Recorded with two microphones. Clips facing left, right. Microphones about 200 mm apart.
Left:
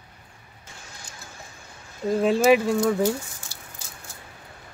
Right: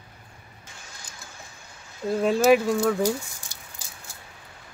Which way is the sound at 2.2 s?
Centre (ahead or behind).